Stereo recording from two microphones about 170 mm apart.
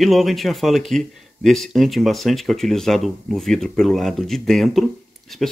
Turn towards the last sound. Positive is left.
turn(degrees=0)  # may be behind; listen again after turning